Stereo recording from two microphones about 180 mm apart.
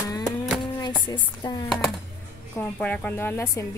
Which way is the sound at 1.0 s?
25° left (ahead or behind).